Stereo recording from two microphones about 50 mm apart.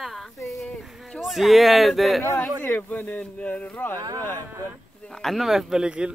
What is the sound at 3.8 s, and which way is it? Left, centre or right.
Speech, left.